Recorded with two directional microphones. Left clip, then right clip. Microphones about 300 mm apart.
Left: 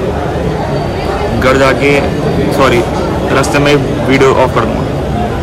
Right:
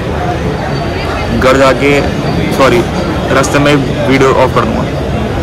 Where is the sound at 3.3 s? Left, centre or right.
Centre.